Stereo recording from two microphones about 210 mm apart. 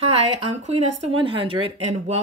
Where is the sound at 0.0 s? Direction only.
30° right (ahead or behind).